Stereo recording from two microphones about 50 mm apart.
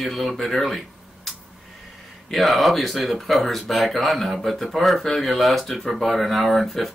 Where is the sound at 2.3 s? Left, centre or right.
Centre.